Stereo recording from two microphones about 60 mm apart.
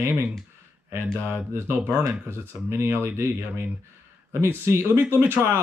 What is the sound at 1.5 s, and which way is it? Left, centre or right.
Speech, right.